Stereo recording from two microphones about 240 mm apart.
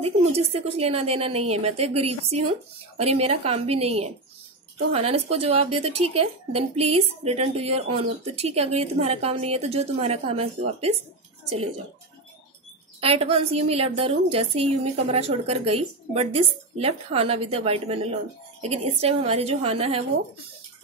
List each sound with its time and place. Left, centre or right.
0.0 s speech: right
13.0 s speech: right